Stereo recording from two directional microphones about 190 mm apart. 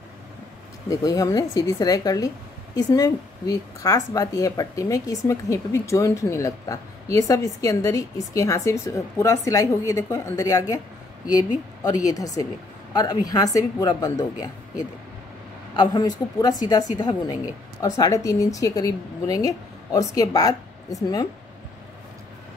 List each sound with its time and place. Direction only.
0.8 s speech: 20° left (ahead or behind)
11.8 s a woman's voice: 20° left (ahead or behind)
15.7 s a woman's voice: 20° left (ahead or behind)